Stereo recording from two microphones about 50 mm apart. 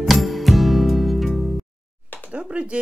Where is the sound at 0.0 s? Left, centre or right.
Centre.